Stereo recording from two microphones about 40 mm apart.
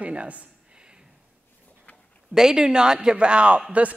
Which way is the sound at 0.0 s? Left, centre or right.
Right.